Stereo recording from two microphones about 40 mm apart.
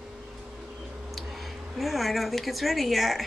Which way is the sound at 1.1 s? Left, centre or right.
Centre.